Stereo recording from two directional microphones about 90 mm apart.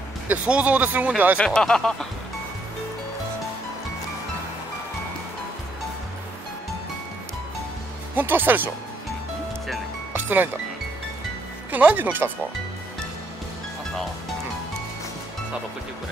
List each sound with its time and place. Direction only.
0.3 s speech: 15° right (ahead or behind)
1.4 s speech: 10° left (ahead or behind)
8.2 s speech: 20° right (ahead or behind)
10.2 s speech: 20° right (ahead or behind)
11.7 s speech: 20° right (ahead or behind)